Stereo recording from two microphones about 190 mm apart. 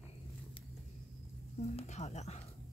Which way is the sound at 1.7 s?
35° left (ahead or behind).